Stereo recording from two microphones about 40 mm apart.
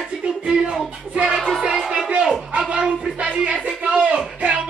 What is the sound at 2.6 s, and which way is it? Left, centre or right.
Speech, right.